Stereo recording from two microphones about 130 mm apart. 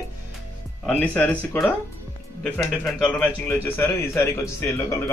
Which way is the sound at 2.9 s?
10° left (ahead or behind).